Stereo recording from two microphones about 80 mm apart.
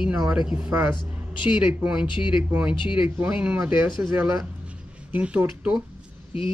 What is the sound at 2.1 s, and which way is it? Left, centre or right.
Speech, left.